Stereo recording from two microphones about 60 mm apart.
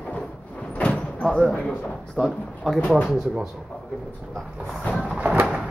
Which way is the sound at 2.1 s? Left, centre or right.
Centre.